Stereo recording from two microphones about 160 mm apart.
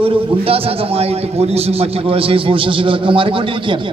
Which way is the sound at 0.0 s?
35° right (ahead or behind).